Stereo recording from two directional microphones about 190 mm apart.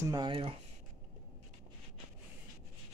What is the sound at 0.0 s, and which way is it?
Speech, 20° right (ahead or behind).